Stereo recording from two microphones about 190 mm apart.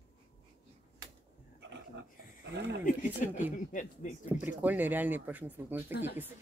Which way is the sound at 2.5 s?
65° right (ahead or behind).